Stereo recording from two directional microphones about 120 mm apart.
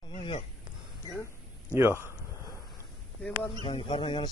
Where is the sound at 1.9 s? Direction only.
25° left (ahead or behind).